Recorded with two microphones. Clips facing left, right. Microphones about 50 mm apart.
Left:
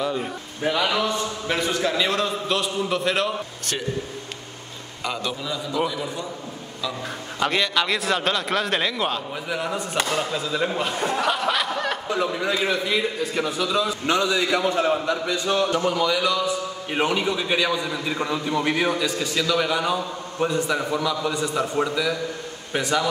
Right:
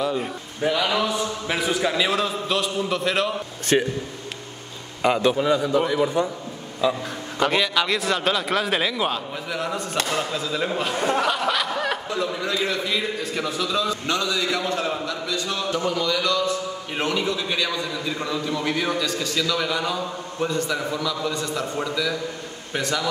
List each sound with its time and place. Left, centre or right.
0.0 s a man's voice: centre
3.7 s a man's voice: right
5.0 s a man's voice: right
7.3 s a man's voice: centre
11.1 s snicker: centre
12.3 s a man's voice: centre
14.0 s a man's voice: centre
15.8 s a man's voice: centre